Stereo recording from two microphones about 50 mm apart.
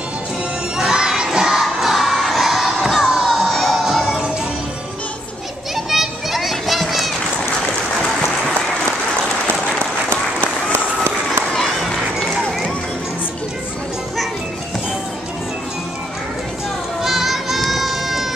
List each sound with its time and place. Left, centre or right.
0.7 s crowd: centre
5.9 s children playing: centre
10.7 s applause: right
11.5 s music: centre
17.0 s a sound: centre